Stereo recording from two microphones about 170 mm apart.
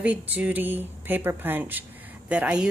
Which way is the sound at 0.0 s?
10° right (ahead or behind).